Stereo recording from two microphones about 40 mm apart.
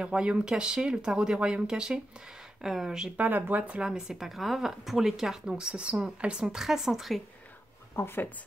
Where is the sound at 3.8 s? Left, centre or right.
Centre.